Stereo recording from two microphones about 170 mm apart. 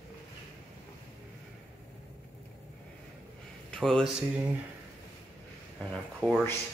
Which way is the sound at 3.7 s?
5° left (ahead or behind).